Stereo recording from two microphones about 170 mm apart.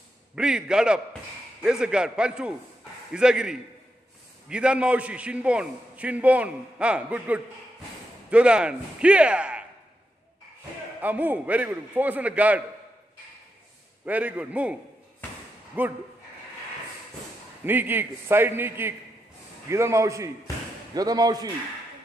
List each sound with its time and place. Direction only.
0.4 s a man's voice: 5° right (ahead or behind)
11.0 s a man's voice: 10° right (ahead or behind)
14.0 s a man's voice: 10° right (ahead or behind)
17.6 s a man's voice: 10° right (ahead or behind)